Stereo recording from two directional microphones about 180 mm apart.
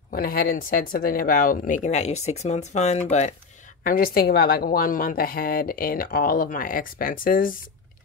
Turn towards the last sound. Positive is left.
turn(degrees=50)  # may be behind; listen again after turning